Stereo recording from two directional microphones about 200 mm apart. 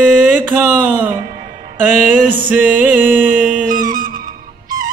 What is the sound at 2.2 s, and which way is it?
Mantra, 45° right (ahead or behind).